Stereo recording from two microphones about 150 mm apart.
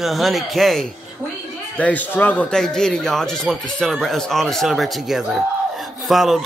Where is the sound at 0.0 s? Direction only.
Centre (ahead or behind).